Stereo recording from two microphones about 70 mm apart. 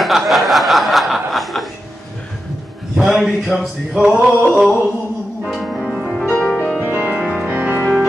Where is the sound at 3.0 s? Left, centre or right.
Centre.